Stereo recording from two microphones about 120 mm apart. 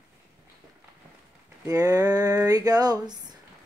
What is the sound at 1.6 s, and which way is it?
Speech, 30° right (ahead or behind).